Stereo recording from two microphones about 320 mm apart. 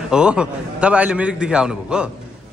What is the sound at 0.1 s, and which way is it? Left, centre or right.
A man's voice, centre.